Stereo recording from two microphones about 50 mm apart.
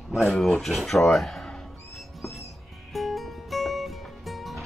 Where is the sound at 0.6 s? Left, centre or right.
Centre.